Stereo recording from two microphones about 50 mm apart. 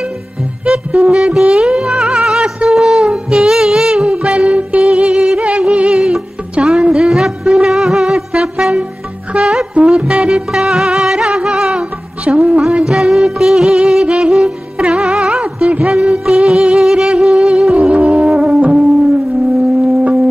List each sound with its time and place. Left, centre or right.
0.7 s music: right
2.7 s a sound: centre
3.1 s music: centre
4.0 s music: right
8.3 s wind instrument: centre
9.4 s music: centre
9.8 s music: right
12.3 s music: right
12.8 s music of bollywood: centre
14.0 s music: centre
15.1 s a sound: centre
15.4 s music: right